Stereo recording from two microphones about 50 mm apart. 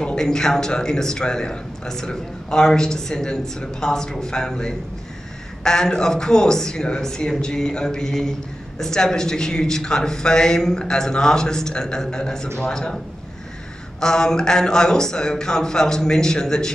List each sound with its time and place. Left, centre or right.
0.0 s a man's voice: centre
13.9 s a man's voice: centre